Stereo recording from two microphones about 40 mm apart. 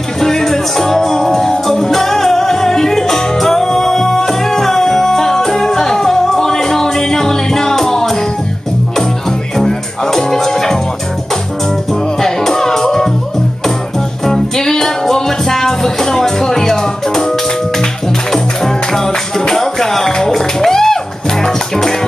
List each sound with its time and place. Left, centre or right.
0.2 s music: centre
9.6 s music: centre
12.2 s music: centre
14.2 s music: centre
18.3 s music: centre